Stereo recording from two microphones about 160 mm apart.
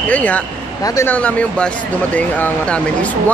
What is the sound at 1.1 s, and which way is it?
Speech, 10° left (ahead or behind).